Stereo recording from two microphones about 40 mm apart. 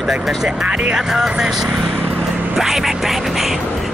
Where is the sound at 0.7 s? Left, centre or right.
Right.